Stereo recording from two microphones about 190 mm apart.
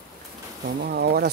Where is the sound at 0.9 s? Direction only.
55° right (ahead or behind).